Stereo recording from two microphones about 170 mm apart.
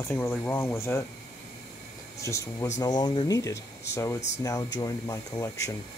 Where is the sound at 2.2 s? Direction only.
15° left (ahead or behind).